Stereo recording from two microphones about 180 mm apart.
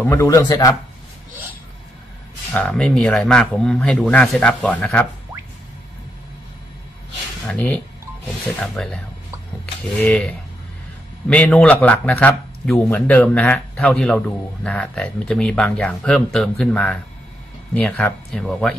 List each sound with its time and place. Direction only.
0.0 s speech: 15° left (ahead or behind)
2.5 s a man's voice: 5° left (ahead or behind)
7.4 s a man's voice: 10° left (ahead or behind)